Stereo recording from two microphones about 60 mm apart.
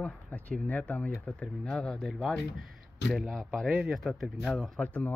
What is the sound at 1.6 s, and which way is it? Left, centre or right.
Speech, centre.